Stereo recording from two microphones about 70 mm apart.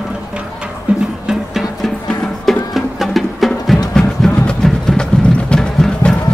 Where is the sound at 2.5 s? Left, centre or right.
Centre.